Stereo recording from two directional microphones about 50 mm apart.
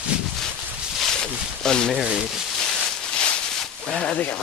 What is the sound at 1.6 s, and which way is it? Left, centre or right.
Speech, centre.